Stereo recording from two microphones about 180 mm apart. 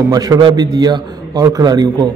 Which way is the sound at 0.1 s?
20° right (ahead or behind).